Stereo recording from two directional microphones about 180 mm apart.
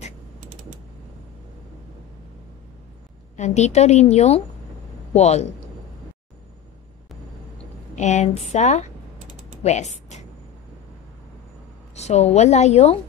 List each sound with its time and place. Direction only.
3.3 s a woman's voice: 40° left (ahead or behind)
7.9 s a woman's voice: 40° left (ahead or behind)
9.6 s typing: 40° left (ahead or behind)
11.9 s a woman's voice: 40° left (ahead or behind)